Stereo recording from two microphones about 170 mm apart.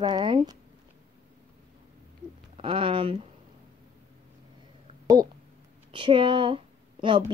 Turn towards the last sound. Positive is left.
turn(degrees=-30)  # may be behind; listen again after turning